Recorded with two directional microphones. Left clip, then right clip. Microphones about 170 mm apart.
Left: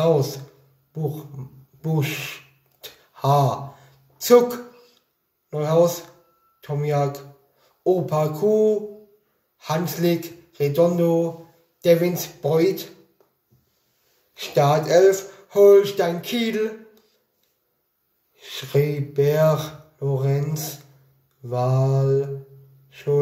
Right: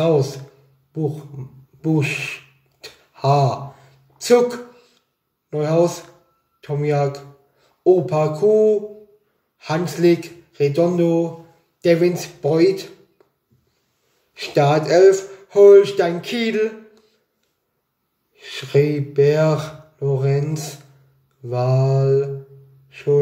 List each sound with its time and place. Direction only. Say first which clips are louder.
0.0 s speech: right 2 dB; 15° right (ahead or behind)
2.0 s speech: right 3 dB; 15° right (ahead or behind)
2.8 s a sound: right 3 dB; 15° right (ahead or behind)
5.5 s speech: right 1 dB; 15° right (ahead or behind)
14.3 s speech: right 2 dB; 15° right (ahead or behind)
18.3 s speech: right 4 dB; 15° right (ahead or behind)
22.8 s music: right 5 dB; 15° right (ahead or behind)